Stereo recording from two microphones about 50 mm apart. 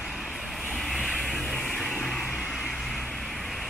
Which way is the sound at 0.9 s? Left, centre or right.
Centre.